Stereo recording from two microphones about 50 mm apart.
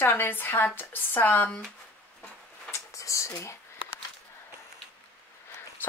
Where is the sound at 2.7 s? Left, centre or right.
Left.